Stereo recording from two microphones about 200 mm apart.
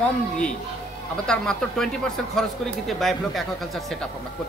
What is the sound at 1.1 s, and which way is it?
Speech, 5° left (ahead or behind).